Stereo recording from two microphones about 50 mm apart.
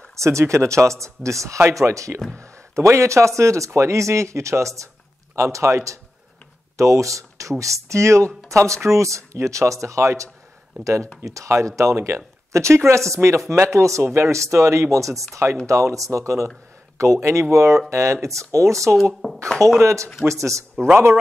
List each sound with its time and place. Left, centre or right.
0.1 s speech: right
6.8 s speech: right
13.7 s speech: right
14.0 s speech: right
19.2 s speech: centre
19.8 s speech: right